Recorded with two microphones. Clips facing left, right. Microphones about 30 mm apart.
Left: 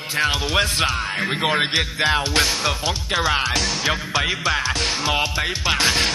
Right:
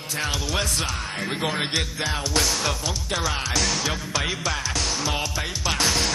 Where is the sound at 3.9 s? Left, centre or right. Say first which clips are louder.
Left 5 dB; left.